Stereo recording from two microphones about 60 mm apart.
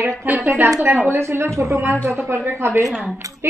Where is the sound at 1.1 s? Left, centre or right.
Right.